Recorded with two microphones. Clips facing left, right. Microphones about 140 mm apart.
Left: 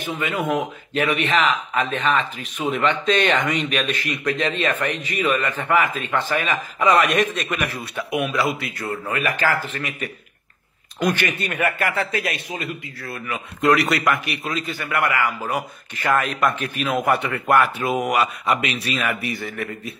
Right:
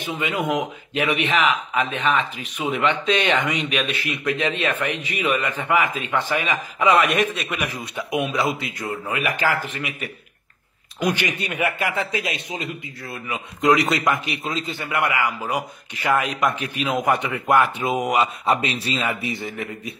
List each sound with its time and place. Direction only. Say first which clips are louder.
0.0 s a man's voice: even; 15° right (ahead or behind)